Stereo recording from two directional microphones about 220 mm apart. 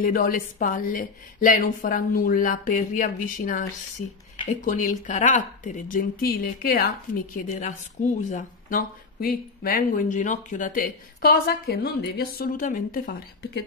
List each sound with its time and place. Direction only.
0.0 s speech: 40° left (ahead or behind)